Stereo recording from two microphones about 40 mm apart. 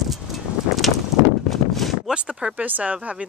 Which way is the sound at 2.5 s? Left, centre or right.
Right.